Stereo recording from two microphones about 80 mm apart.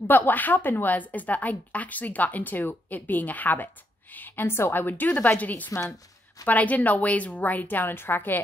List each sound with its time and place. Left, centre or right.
0.0 s a woman's voice: left